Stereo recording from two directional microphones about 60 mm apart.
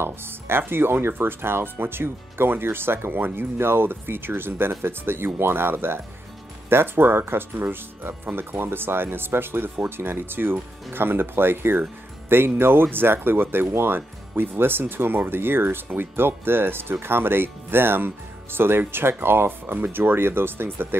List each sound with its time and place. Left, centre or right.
0.0 s speech: right